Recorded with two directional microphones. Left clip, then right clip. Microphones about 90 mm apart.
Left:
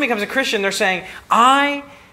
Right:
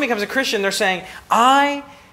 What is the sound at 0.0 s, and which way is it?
A man's voice, 20° right (ahead or behind).